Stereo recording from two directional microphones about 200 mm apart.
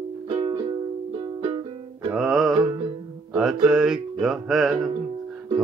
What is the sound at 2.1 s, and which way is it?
Music, centre (ahead or behind).